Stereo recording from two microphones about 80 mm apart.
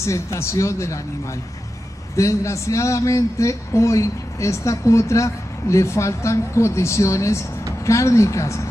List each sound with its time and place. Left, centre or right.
0.0 s a man's voice: left
2.1 s a man's voice: left